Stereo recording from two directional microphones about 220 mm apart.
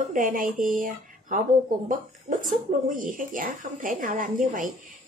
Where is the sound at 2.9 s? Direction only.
35° right (ahead or behind).